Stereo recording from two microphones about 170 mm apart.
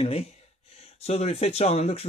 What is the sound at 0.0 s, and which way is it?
Speech, 35° left (ahead or behind).